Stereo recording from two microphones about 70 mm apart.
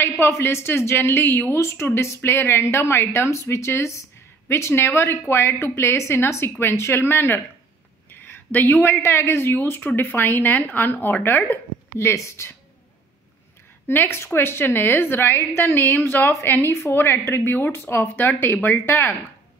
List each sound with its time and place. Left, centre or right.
0.0 s a woman's voice: left
12.0 s a woman's voice: left
13.8 s a woman's voice: left